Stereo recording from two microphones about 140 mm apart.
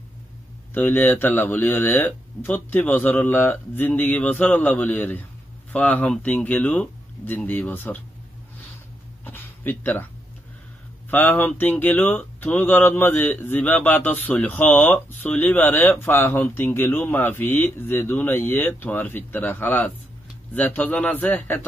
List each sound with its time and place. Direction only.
0.7 s speech: 15° left (ahead or behind)
9.2 s a sound: 15° left (ahead or behind)
11.1 s speech: 15° left (ahead or behind)